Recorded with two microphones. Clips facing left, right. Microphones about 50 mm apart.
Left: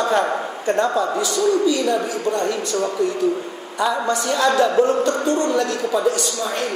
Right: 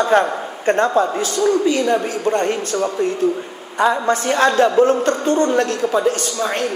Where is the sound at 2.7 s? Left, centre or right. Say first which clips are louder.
Even; right.